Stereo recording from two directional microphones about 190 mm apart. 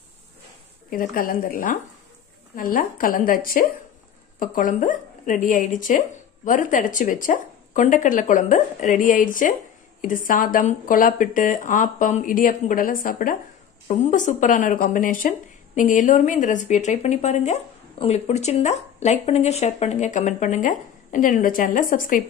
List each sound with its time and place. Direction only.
0.8 s a woman's voice: 45° left (ahead or behind)